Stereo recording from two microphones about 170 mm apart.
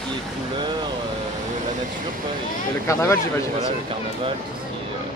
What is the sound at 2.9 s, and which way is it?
Speech, 15° left (ahead or behind).